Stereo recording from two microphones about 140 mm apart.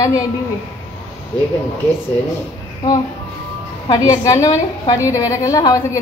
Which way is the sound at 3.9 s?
25° left (ahead or behind).